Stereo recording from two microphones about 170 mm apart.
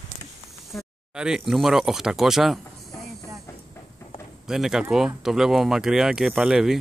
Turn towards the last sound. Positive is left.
turn(degrees=-5)  # may be behind; listen again after turning